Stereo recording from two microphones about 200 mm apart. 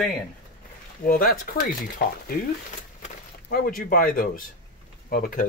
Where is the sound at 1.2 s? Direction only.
45° left (ahead or behind).